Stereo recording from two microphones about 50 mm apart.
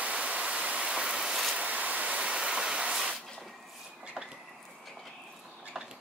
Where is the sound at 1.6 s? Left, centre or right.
Right.